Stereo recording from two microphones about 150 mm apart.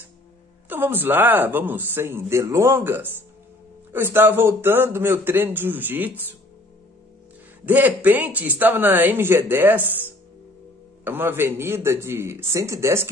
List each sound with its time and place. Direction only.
0.7 s speech: 15° right (ahead or behind)
7.6 s speech: 10° right (ahead or behind)